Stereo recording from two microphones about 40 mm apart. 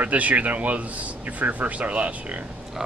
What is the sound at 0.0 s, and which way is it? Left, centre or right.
A man's voice, right.